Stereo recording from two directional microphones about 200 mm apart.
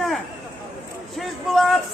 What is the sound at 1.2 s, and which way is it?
Speech, centre (ahead or behind).